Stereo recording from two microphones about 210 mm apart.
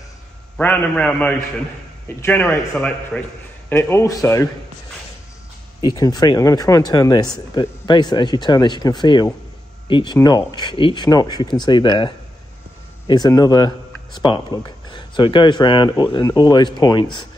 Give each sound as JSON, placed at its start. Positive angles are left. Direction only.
{"t": 0.6, "sound": "a man's voice", "side_deg": 10}
{"t": 5.8, "sound": "speech", "side_deg": 20}